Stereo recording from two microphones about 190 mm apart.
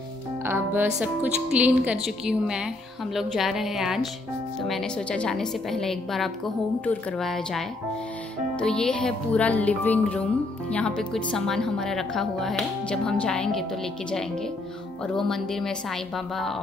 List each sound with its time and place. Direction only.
0.4 s a woman's voice: 10° right (ahead or behind)
15.1 s a woman's voice: centre (ahead or behind)